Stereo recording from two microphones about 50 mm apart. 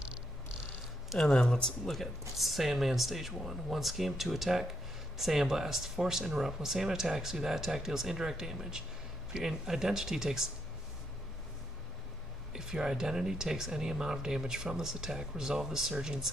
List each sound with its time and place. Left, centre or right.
1.2 s speech: centre
1.9 s speech: centre
12.5 s speech: centre